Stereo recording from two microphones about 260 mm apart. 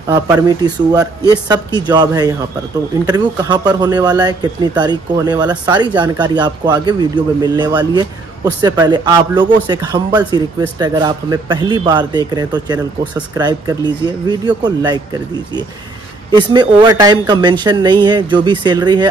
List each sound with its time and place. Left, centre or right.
0.1 s a man's voice: centre
16.3 s a man's voice: centre